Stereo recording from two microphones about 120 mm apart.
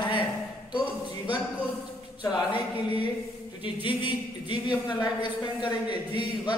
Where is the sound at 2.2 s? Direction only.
45° left (ahead or behind).